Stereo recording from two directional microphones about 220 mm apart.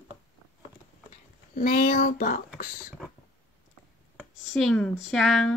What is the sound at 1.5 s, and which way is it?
Speech, 40° left (ahead or behind).